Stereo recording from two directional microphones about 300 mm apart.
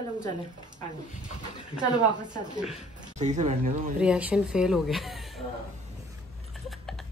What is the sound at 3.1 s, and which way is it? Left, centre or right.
Speech, right.